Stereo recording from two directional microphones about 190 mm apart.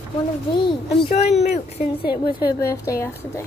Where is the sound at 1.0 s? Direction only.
35° left (ahead or behind).